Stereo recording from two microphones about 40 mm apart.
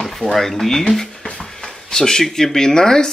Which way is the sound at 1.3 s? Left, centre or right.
Left.